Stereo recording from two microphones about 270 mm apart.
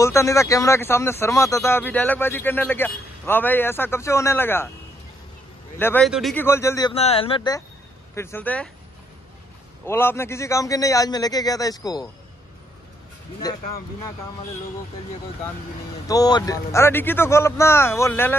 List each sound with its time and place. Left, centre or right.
0.0 s speech: centre
5.8 s speech: centre
6.9 s speech: left; by 8.6 s centre
9.8 s speech: centre
13.4 s speech: centre
16.1 s speech: centre